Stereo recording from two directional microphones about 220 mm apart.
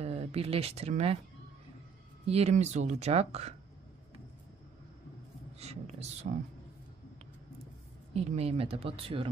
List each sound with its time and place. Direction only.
0.0 s speech: 30° right (ahead or behind)
2.2 s speech: 30° right (ahead or behind)
5.6 s a sound: 30° right (ahead or behind)
6.2 s speech: 45° right (ahead or behind)
8.1 s speech: 30° right (ahead or behind)